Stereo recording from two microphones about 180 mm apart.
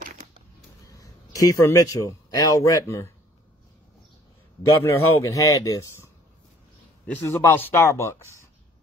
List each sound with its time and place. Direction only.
0.8 s a man's voice: 20° left (ahead or behind)
4.8 s speech: 15° left (ahead or behind)
7.1 s speech: 10° left (ahead or behind)